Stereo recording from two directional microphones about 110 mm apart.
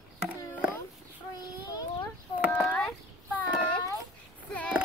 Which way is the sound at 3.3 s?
15° left (ahead or behind).